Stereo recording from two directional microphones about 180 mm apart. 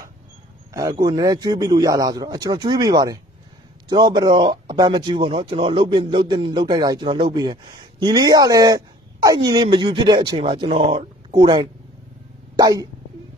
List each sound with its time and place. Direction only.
0.7 s speech: 20° right (ahead or behind)